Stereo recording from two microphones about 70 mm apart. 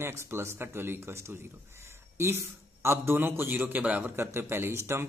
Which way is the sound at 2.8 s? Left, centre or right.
Right.